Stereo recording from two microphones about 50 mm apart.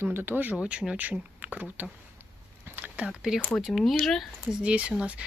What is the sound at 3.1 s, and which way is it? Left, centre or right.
Speech, centre.